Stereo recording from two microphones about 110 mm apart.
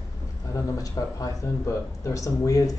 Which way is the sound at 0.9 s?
30° left (ahead or behind).